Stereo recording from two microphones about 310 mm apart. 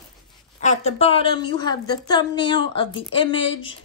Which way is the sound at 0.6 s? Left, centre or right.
Left.